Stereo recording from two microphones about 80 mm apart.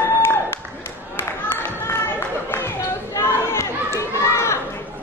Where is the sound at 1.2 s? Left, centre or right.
Left.